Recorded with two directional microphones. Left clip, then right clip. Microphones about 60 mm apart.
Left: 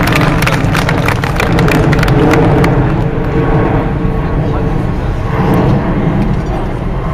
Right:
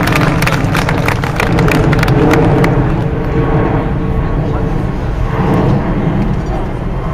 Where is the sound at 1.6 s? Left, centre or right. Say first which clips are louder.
Left 1 dB; centre.